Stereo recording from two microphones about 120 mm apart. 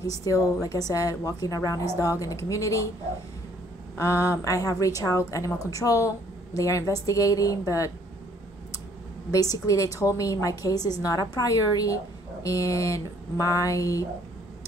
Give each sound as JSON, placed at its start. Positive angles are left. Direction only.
{"t": 0.2, "sound": "a woman's voice", "side_deg": 25}
{"t": 3.9, "sound": "a woman's voice", "side_deg": 25}
{"t": 9.3, "sound": "a woman's voice", "side_deg": 30}
{"t": 12.4, "sound": "a woman's voice", "side_deg": 25}